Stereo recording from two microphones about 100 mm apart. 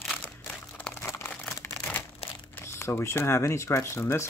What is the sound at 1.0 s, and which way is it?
Crumpling, 25° left (ahead or behind).